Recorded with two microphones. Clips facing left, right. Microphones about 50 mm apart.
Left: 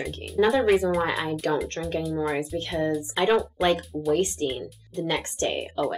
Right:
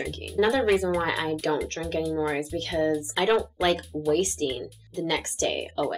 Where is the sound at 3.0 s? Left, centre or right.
Centre.